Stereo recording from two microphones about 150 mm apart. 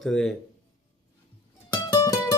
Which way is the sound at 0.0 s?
Centre (ahead or behind).